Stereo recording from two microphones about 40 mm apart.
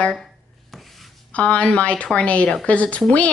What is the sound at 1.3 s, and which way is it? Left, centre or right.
Speech, left.